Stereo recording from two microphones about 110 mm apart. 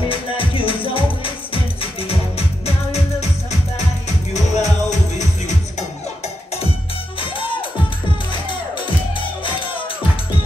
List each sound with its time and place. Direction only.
0.1 s music: 55° left (ahead or behind); by 3.3 s 70° left (ahead or behind)
4.3 s music: 90° left
7.2 s music: 50° left (ahead or behind)